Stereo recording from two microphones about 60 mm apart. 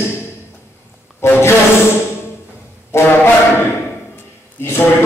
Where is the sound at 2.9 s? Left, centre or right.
Left.